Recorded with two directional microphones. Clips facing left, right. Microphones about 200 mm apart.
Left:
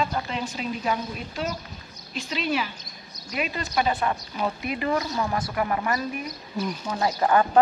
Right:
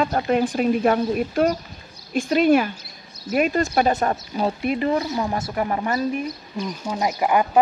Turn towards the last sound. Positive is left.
turn(degrees=-15)  # may be behind; listen again after turning